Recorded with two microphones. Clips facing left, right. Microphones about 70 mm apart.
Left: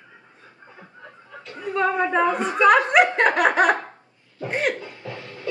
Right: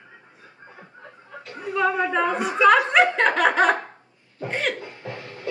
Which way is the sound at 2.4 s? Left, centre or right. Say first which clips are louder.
Left 1 dB; centre.